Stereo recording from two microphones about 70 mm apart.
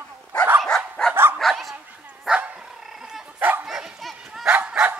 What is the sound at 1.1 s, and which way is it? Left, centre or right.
Dog, right.